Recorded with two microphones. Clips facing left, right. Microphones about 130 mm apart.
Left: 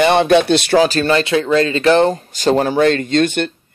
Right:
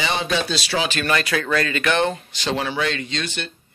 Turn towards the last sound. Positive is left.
turn(degrees=55)  # may be behind; listen again after turning